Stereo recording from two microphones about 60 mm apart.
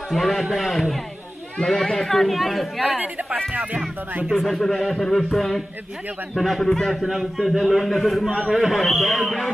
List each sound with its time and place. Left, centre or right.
0.1 s a man's voice: centre
4.3 s a man's voice: centre